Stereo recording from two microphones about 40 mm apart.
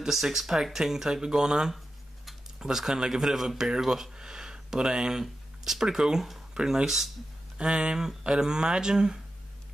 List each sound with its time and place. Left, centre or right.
0.0 s speech: centre
7.5 s speech: right